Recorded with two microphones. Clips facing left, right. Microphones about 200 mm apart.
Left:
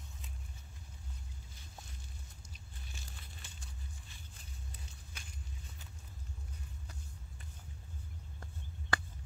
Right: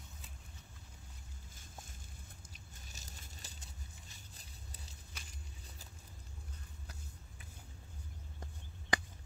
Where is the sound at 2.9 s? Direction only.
40° right (ahead or behind).